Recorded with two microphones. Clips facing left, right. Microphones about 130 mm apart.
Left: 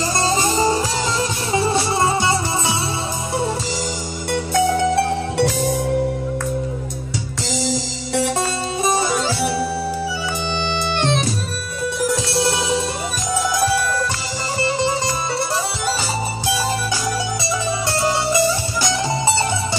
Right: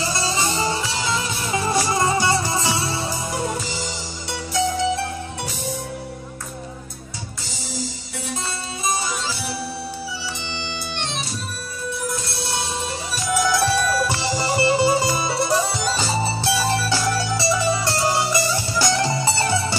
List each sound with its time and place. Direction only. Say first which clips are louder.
0.0 s music: left 4 dB; 45° left (ahead or behind)
1.7 s music: right 1 dB; 25° left (ahead or behind)
4.3 s music: left 5 dB; 60° left (ahead or behind)
10.5 s bagpipes: left 9 dB; 60° left (ahead or behind)
12.0 s music: left 13 dB; 90° left
14.6 s music: right 2 dB; 10° right (ahead or behind)
18.8 s music: right 4 dB; 20° left (ahead or behind)